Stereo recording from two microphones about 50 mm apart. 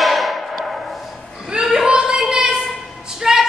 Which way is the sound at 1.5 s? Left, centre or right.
Centre.